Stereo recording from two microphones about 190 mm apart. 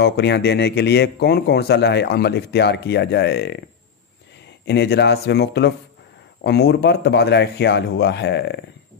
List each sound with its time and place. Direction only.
0.0 s speech: 60° left (ahead or behind)
4.6 s speech: 65° left (ahead or behind)